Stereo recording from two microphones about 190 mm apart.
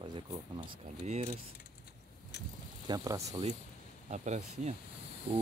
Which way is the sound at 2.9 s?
20° right (ahead or behind).